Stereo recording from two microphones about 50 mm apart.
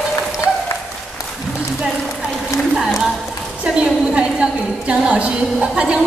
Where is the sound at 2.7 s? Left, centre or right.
Centre.